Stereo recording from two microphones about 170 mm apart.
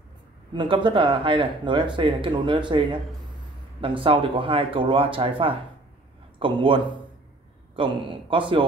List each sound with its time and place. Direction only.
0.5 s speech: 30° right (ahead or behind)